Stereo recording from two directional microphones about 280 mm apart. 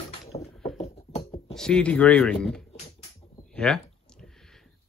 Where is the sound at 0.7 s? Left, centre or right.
Left.